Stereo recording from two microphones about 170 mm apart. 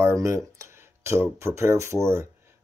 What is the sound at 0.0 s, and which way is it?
Speech, 20° right (ahead or behind).